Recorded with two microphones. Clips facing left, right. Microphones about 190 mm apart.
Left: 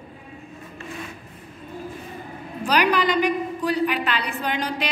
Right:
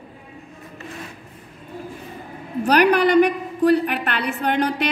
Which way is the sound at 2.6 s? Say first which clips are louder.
Right 5 dB; 60° right (ahead or behind).